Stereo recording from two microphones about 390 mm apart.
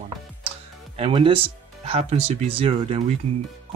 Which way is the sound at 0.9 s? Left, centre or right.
Centre.